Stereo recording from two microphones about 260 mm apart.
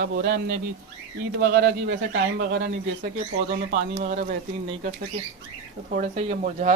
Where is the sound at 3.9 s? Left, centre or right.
Right.